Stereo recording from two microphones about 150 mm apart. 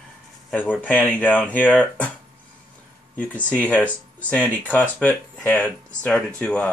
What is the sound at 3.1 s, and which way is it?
Speech, 10° left (ahead or behind).